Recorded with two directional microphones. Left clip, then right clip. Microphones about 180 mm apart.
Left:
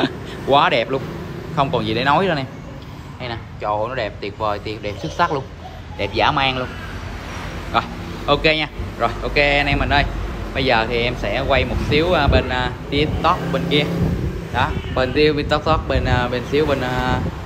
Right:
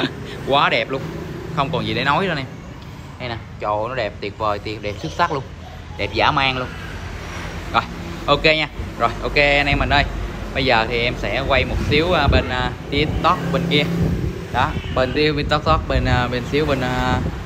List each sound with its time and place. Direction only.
0.0 s a man's voice: 15° left (ahead or behind)
7.7 s speech: 10° left (ahead or behind)